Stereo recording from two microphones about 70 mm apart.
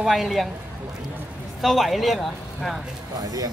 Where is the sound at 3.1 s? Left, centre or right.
Right.